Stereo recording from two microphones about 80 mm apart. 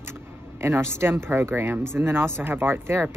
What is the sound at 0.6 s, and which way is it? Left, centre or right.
Speech, right.